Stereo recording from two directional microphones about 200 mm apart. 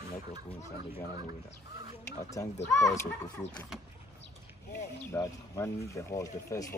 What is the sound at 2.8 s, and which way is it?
Speech, 15° left (ahead or behind).